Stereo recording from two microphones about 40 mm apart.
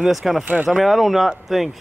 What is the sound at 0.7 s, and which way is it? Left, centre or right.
Speech, centre.